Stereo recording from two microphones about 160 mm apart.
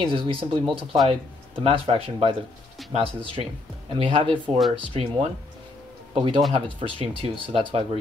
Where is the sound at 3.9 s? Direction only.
35° right (ahead or behind).